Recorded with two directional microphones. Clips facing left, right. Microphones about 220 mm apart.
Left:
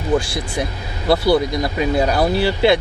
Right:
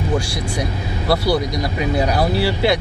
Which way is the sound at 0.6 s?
25° left (ahead or behind).